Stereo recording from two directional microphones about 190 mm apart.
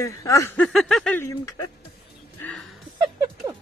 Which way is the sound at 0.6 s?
Centre (ahead or behind).